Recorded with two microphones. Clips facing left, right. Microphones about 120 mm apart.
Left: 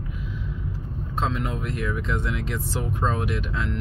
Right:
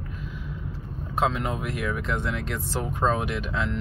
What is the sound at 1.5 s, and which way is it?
Speech, 5° right (ahead or behind).